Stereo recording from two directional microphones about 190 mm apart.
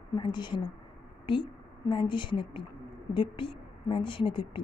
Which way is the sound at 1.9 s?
25° left (ahead or behind).